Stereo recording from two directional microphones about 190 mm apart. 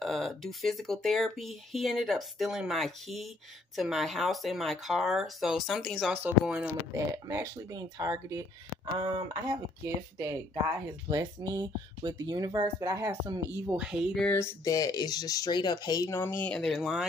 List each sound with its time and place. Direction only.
0.0 s speech: centre (ahead or behind)
6.9 s speech: 15° right (ahead or behind)
11.1 s speech: 20° right (ahead or behind); by 14.2 s 5° right (ahead or behind)
14.2 s speech: 10° left (ahead or behind)